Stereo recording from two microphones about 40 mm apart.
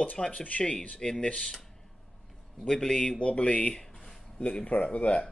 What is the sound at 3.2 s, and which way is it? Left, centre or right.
Speech, left.